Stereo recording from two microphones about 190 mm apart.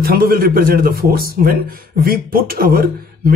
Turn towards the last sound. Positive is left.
turn(degrees=-50)  # may be behind; listen again after turning